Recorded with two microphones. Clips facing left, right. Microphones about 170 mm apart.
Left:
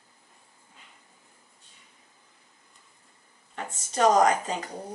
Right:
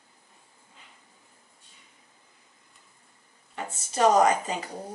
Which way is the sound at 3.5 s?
10° right (ahead or behind).